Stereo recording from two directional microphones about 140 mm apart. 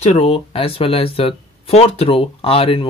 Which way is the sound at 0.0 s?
50° left (ahead or behind).